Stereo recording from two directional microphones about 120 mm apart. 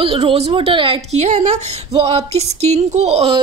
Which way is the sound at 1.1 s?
65° right (ahead or behind).